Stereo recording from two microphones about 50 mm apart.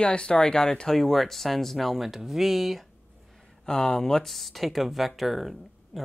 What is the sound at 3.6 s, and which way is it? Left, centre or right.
Speech, left.